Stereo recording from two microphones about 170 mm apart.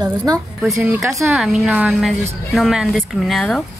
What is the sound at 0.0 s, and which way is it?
Speech, 20° right (ahead or behind).